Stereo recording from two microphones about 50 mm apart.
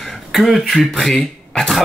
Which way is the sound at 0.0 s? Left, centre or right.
Centre.